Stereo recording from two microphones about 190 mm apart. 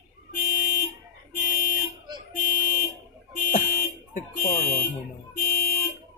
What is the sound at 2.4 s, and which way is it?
Car alarm, 50° left (ahead or behind).